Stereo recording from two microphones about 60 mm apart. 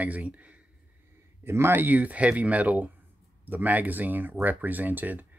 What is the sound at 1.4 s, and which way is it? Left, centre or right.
Speech, right.